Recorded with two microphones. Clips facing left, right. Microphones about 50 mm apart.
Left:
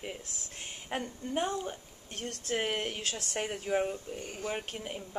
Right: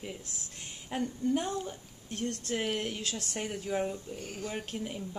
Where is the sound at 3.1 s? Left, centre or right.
Left.